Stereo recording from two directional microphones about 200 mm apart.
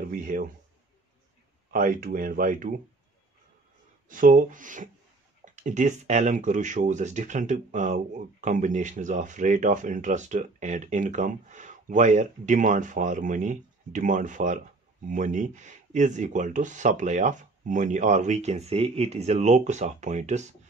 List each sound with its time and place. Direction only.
0.1 s speech: 40° right (ahead or behind)
1.7 s speech: 45° right (ahead or behind)
4.1 s speech: 40° right (ahead or behind)